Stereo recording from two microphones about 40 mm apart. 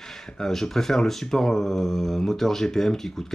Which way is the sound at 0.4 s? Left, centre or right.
Centre.